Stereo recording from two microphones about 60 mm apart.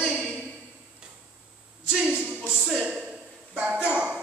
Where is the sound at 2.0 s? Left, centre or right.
Centre.